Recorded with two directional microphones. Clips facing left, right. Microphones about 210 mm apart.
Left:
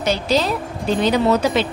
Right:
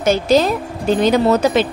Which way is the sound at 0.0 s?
45° right (ahead or behind).